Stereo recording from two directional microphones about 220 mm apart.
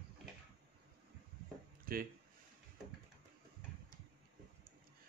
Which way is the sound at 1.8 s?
40° right (ahead or behind).